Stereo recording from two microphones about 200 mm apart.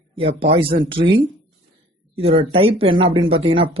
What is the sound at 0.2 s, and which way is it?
Speech, 25° right (ahead or behind).